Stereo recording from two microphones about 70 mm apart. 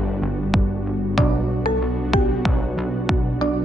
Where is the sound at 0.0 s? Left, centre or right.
Centre.